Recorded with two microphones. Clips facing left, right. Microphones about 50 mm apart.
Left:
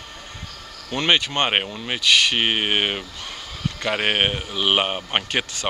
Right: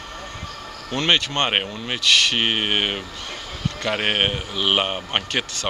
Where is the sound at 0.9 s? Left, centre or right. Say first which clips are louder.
Even; centre.